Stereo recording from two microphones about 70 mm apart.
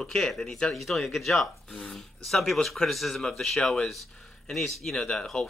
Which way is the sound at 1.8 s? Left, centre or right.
Centre.